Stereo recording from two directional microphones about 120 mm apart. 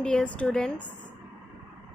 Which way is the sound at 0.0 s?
10° left (ahead or behind).